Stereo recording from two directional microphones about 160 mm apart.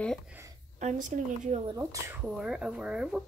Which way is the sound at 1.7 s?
20° right (ahead or behind).